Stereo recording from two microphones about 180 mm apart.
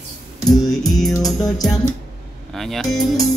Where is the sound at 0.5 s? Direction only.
20° left (ahead or behind).